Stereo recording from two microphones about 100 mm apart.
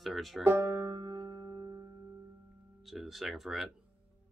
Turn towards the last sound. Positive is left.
turn(degrees=0)  # may be behind; listen again after turning